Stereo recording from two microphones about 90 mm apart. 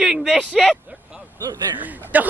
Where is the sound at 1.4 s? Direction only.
45° right (ahead or behind).